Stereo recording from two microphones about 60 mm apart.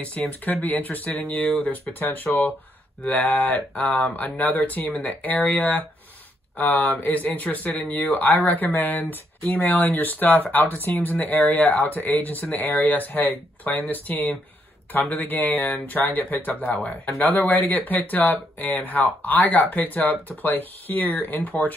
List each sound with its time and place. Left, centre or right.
0.0 s speech: left